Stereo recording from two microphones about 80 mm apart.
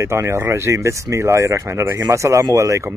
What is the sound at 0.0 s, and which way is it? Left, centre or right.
Speech, right.